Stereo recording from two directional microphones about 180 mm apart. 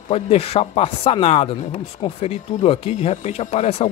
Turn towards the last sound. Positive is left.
turn(degrees=40)  # may be behind; listen again after turning